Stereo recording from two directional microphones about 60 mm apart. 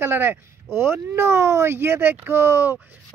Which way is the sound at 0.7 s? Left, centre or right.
Right.